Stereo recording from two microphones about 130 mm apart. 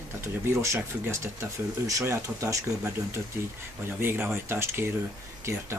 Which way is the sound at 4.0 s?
15° right (ahead or behind).